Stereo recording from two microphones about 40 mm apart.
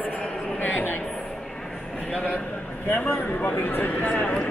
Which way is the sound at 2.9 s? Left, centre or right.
Left.